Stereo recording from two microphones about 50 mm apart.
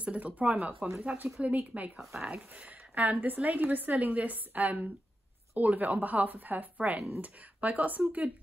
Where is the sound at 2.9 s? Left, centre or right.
Right.